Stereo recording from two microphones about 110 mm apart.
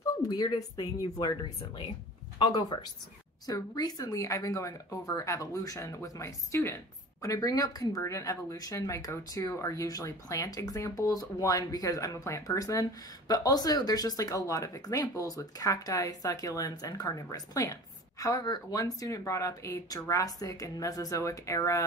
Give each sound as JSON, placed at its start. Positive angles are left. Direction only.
{"t": 0.3, "sound": "speech", "side_deg": 35}
{"t": 2.3, "sound": "speech", "side_deg": 40}